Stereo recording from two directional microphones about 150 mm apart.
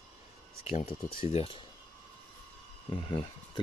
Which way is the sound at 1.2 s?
40° left (ahead or behind).